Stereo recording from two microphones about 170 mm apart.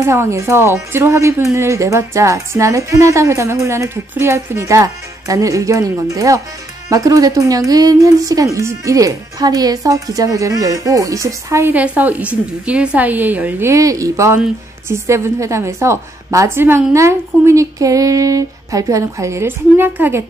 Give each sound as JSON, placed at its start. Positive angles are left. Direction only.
{"t": 0.0, "sound": "a woman's voice", "side_deg": -15}